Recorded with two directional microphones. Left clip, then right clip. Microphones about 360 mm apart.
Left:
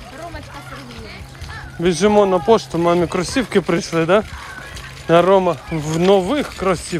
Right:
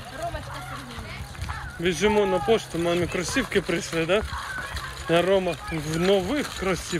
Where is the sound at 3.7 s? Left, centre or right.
Left.